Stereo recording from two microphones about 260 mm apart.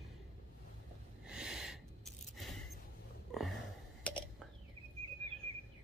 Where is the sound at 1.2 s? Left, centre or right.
Centre.